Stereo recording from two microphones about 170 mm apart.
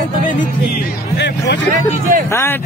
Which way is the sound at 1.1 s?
90° left.